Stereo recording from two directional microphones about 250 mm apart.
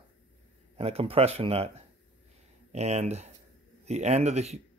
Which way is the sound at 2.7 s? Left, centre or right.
Right.